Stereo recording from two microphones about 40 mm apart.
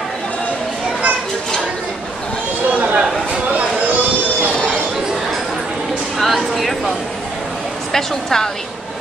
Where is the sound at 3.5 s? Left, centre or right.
Right.